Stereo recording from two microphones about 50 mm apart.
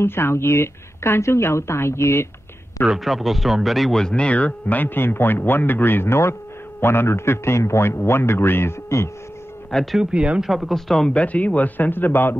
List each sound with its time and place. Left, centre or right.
0.0 s a man's voice: left
2.9 s speech: centre
4.0 s speech: centre
4.3 s a man's voice: left
9.7 s speech: centre
10.1 s speech: right
10.4 s speech: centre
11.1 s speech: left